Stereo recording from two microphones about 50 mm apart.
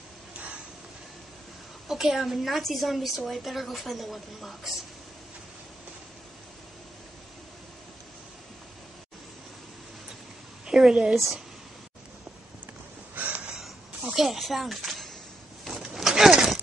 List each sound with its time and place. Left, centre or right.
1.9 s a woman's voice: centre
10.7 s a woman's voice: centre
13.1 s crow: right
14.1 s speech: centre
15.6 s a sound: centre